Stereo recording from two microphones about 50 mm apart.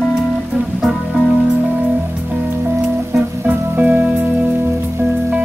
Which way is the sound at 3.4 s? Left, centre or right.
Right.